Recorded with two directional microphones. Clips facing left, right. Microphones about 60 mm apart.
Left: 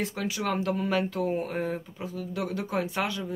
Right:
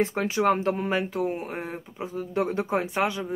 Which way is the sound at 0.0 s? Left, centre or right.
Right.